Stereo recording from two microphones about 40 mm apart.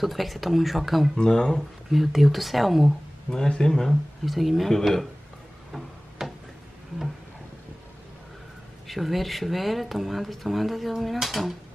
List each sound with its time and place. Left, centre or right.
0.0 s speech: centre
1.1 s speech: centre
1.9 s speech: centre
3.3 s speech: left
3.6 s speech: centre
5.7 s a sound: centre
8.8 s speech: centre